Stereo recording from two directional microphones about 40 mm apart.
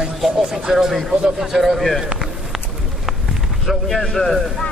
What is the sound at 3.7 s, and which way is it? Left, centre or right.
Speech, centre.